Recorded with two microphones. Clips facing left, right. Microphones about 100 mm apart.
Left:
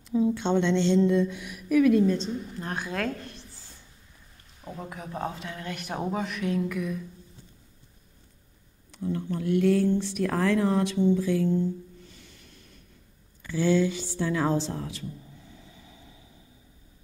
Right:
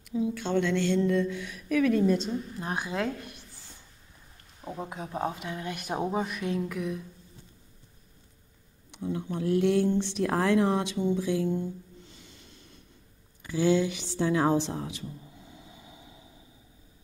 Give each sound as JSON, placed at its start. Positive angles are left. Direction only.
{"t": 0.1, "sound": "speech", "side_deg": 30}
{"t": 2.0, "sound": "a woman's voice", "side_deg": -10}
{"t": 4.6, "sound": "a sound", "side_deg": -10}
{"t": 4.8, "sound": "a woman's voice", "side_deg": -20}
{"t": 8.9, "sound": "a woman's voice", "side_deg": -15}
{"t": 13.4, "sound": "a sound", "side_deg": -15}